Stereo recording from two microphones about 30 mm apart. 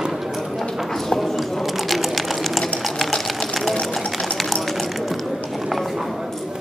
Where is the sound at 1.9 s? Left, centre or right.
Centre.